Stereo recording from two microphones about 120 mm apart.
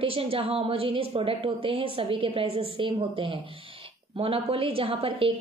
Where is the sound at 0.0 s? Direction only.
50° right (ahead or behind).